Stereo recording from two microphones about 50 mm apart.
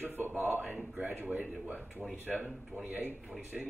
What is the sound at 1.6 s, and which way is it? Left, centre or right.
Speech, right.